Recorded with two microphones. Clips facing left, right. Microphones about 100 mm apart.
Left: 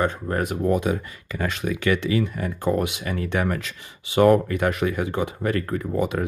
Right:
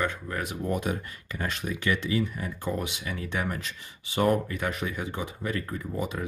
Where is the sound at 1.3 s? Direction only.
90° left.